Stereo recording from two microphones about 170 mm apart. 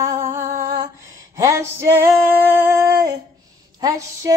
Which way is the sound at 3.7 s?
20° right (ahead or behind).